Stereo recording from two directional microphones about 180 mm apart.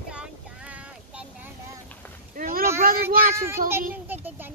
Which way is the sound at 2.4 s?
50° right (ahead or behind).